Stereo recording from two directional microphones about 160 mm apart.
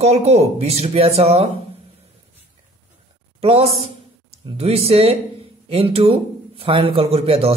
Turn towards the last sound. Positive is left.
turn(degrees=-35)  # may be behind; listen again after turning